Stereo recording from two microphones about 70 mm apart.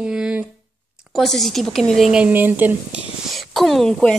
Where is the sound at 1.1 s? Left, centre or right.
Centre.